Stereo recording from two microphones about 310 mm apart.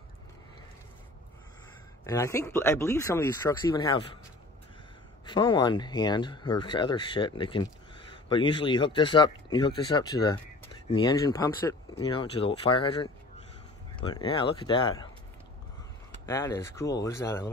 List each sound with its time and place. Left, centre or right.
2.0 s speech: centre
5.2 s speech: centre
16.3 s speech: centre